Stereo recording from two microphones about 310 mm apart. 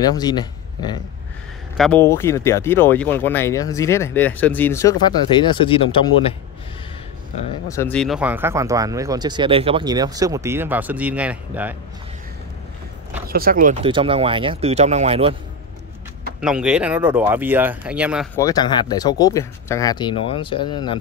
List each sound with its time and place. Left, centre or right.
0.0 s speech: centre
7.6 s speech: centre
13.3 s speech: right
16.3 s speech: centre
18.4 s speech: centre